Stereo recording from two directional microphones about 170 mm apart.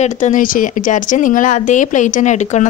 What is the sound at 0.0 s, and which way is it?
A woman's voice, 50° left (ahead or behind).